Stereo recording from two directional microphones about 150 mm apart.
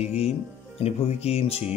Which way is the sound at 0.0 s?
45° left (ahead or behind).